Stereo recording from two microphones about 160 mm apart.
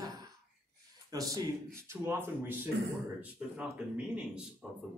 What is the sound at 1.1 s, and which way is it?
Speech, 20° right (ahead or behind).